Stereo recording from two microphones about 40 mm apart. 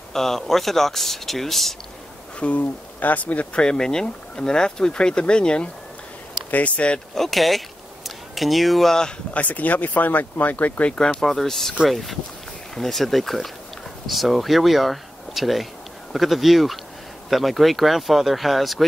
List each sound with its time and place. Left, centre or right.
0.1 s speech: centre
2.6 s speech: left
3.5 s speech: centre
7.2 s speech: centre
9.3 s speech: left
10.9 s speech: left
11.1 s speech: centre